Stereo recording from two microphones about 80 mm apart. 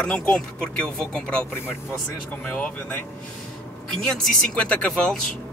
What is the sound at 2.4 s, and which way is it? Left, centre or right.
Speech, centre.